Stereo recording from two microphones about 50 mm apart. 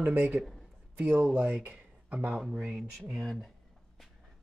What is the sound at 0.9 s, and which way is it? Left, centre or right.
Speech, right.